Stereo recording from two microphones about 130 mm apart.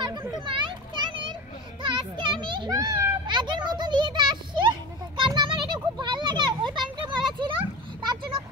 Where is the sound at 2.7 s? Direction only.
25° right (ahead or behind).